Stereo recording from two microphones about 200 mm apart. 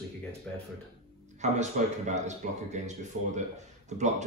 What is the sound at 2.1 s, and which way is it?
A man's voice, 35° right (ahead or behind).